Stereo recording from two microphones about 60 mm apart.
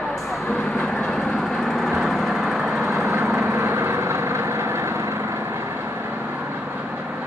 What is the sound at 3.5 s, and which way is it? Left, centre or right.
Vehicle, right.